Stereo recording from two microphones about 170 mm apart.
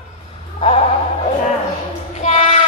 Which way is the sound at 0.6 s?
35° left (ahead or behind).